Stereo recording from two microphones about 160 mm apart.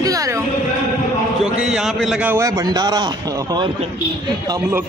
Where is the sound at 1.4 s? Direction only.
5° right (ahead or behind); by 3.7 s 25° right (ahead or behind).